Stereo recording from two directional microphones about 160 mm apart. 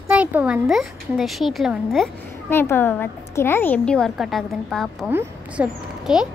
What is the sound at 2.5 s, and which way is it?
A woman's voice, 15° left (ahead or behind).